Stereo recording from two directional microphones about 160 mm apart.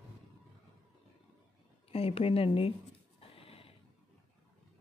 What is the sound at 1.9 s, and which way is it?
Speech, 35° left (ahead or behind).